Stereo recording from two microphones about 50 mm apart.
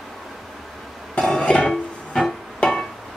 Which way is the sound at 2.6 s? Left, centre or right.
Centre.